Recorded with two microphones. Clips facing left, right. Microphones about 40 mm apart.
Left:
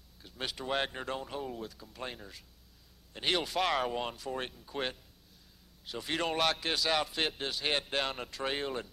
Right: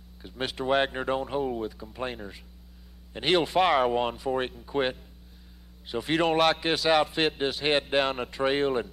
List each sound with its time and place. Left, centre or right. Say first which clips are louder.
0.2 s a man's voice: right 8 dB; centre